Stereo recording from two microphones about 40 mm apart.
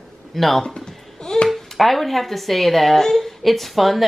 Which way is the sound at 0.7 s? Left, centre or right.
Centre.